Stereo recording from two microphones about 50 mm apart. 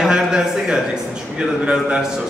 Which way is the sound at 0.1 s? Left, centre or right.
Centre.